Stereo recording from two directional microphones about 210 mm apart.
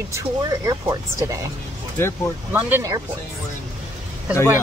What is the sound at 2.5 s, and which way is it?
Speech, 10° right (ahead or behind).